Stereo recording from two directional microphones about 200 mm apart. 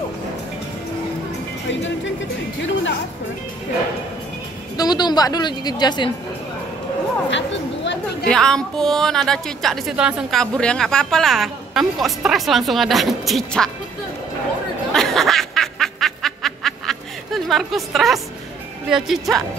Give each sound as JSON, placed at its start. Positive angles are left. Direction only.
{"t": 2.6, "sound": "speech", "side_deg": 65}
{"t": 4.7, "sound": "a woman's voice", "side_deg": 20}
{"t": 7.2, "sound": "speech", "side_deg": 65}
{"t": 8.3, "sound": "a woman's voice", "side_deg": 5}
{"t": 14.9, "sound": "snicker", "side_deg": 0}
{"t": 18.9, "sound": "a woman's voice", "side_deg": 0}